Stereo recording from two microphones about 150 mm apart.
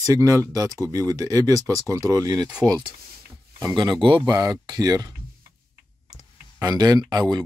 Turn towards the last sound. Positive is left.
turn(degrees=-25)  # may be behind; listen again after turning